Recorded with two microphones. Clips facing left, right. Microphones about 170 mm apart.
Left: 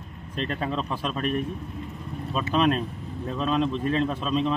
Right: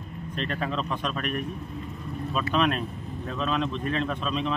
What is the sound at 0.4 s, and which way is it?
Speech, 30° left (ahead or behind).